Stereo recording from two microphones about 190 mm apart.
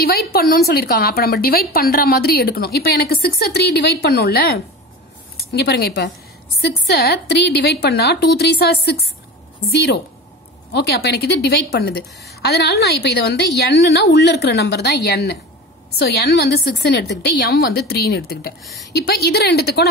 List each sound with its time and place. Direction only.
0.0 s a woman's voice: 55° left (ahead or behind)
10.7 s a woman's voice: 60° left (ahead or behind)
18.6 s speech: centre (ahead or behind)
18.9 s a woman's voice: 60° left (ahead or behind)